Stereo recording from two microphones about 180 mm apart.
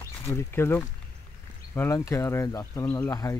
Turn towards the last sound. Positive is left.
turn(degrees=20)  # may be behind; listen again after turning